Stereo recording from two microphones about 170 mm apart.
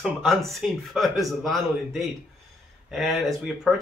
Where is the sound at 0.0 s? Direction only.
Centre (ahead or behind).